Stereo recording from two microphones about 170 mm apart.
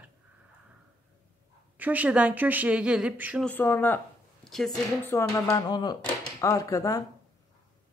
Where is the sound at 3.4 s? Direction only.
10° left (ahead or behind).